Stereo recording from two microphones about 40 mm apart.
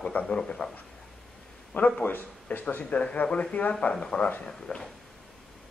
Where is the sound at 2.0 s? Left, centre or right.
Left.